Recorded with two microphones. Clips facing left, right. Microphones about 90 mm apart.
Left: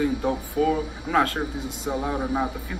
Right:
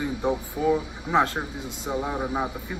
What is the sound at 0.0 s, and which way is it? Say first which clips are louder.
Speech: left 2 dB; 15° right (ahead or behind).